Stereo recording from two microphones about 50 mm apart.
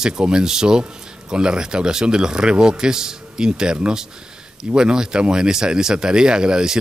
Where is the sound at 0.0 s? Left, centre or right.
Centre.